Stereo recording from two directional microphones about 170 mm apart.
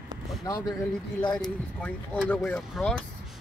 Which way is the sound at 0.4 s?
20° left (ahead or behind).